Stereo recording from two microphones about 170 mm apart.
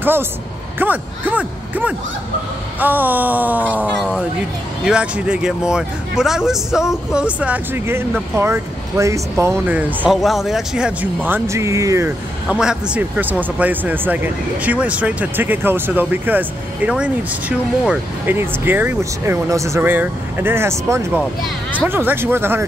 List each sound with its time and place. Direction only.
0.0 s speech: 10° right (ahead or behind)
11.2 s speech: 15° right (ahead or behind)
12.4 s speech: 5° right (ahead or behind)